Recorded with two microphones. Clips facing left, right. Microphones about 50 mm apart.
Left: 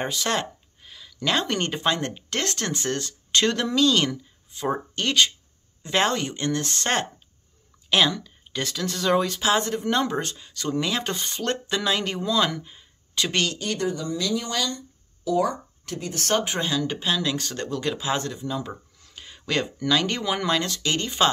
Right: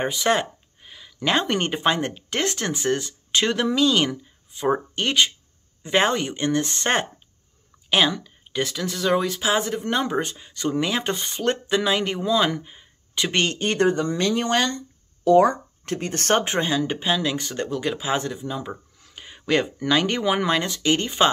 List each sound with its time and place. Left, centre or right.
0.0 s speech: centre
18.7 s a sound: centre
19.1 s speech: centre